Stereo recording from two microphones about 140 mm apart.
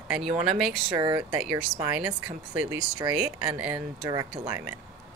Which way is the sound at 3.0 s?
30° right (ahead or behind).